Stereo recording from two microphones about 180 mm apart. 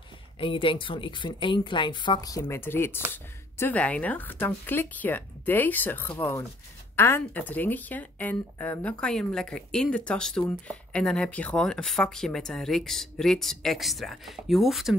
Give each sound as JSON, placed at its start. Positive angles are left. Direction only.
{"t": 0.4, "sound": "speech", "side_deg": 30}
{"t": 2.4, "sound": "speech", "side_deg": 10}